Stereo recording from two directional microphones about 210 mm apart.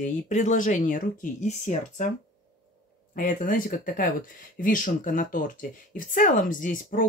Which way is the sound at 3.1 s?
40° left (ahead or behind).